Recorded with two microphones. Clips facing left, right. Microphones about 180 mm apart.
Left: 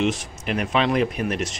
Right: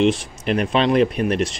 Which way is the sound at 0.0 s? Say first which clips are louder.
Right 5 dB; 30° right (ahead or behind).